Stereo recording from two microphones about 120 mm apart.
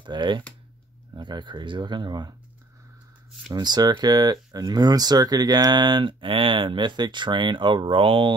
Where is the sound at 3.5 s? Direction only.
35° right (ahead or behind).